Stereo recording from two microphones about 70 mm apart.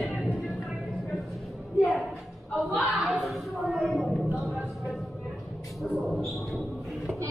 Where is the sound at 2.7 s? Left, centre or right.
Centre.